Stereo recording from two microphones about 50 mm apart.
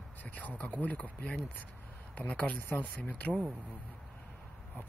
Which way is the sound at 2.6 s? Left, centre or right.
Left.